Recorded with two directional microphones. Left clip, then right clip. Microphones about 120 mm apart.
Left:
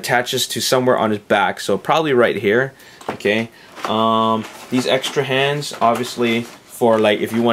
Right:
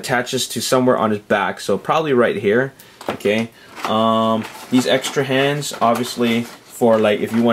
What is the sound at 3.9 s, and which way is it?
Speech, 25° left (ahead or behind).